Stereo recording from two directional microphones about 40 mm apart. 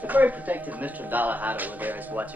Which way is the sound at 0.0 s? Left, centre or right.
Right.